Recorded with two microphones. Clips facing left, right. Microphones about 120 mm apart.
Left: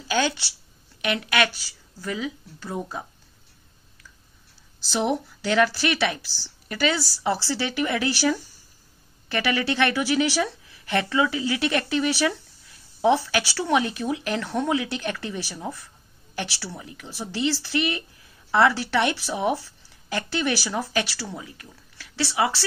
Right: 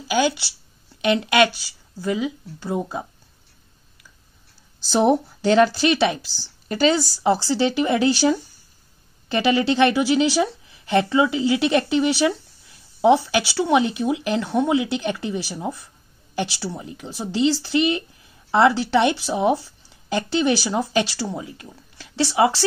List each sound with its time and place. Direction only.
0.1 s speech: 15° right (ahead or behind)
1.0 s speech: 25° right (ahead or behind)
4.9 s speech: 35° right (ahead or behind)